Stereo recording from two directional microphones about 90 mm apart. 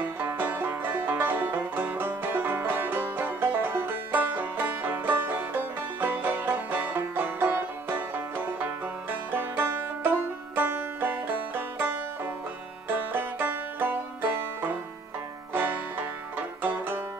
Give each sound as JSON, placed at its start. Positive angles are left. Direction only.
{"t": 0.2, "sound": "banjo", "side_deg": -20}
{"t": 9.3, "sound": "music", "side_deg": -20}
{"t": 10.5, "sound": "banjo", "side_deg": -20}